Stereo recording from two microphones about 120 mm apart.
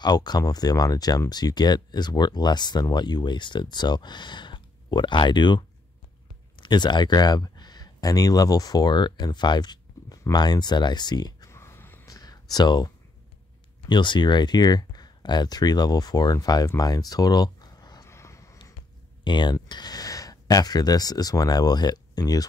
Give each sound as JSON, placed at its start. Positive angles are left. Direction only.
{"t": 0.0, "sound": "speech", "side_deg": 35}
{"t": 11.5, "sound": "wheeze", "side_deg": 20}
{"t": 12.1, "sound": "a sound", "side_deg": 30}
{"t": 13.8, "sound": "speech", "side_deg": 40}
{"t": 19.2, "sound": "speech", "side_deg": 40}